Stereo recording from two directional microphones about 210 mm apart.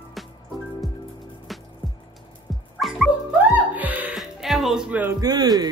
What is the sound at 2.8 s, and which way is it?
Music, centre (ahead or behind).